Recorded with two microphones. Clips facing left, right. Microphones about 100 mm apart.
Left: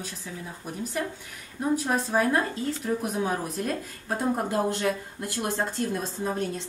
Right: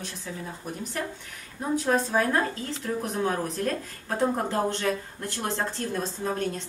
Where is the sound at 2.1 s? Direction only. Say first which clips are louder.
Even; 10° left (ahead or behind).